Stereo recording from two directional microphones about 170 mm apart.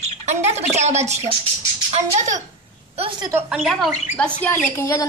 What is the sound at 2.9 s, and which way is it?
Speech, 35° right (ahead or behind).